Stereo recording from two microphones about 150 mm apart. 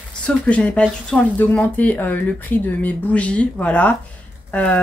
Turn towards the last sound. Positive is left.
turn(degrees=10)  # may be behind; listen again after turning